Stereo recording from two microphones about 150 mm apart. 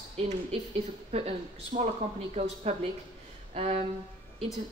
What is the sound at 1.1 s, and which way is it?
A woman's voice, 50° right (ahead or behind).